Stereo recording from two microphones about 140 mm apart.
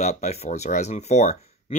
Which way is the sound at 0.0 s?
55° left (ahead or behind).